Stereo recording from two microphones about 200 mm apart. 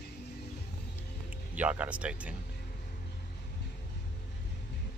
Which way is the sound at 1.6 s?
5° right (ahead or behind).